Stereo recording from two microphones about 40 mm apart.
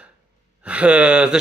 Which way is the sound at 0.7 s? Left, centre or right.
Right.